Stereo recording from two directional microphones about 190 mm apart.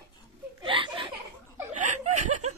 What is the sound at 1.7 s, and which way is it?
Chuckle, 40° right (ahead or behind).